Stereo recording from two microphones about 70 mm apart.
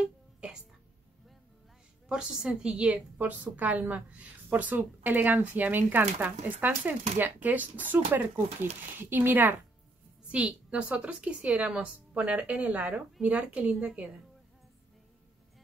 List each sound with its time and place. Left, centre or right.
2.0 s a woman's voice: centre; by 9.6 s right
10.3 s a woman's voice: centre